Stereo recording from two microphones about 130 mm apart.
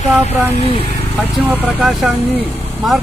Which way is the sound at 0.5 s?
50° left (ahead or behind).